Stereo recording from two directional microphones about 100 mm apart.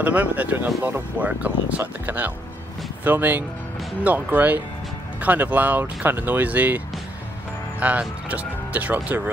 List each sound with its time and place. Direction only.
0.0 s speech: 15° right (ahead or behind)
7.8 s speech: 15° right (ahead or behind)